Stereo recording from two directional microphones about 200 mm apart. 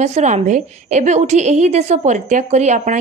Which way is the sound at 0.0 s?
35° right (ahead or behind).